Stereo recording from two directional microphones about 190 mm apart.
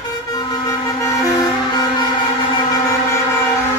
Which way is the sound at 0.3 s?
20° left (ahead or behind).